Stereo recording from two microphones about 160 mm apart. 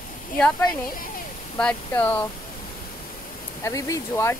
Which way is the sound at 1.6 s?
10° left (ahead or behind).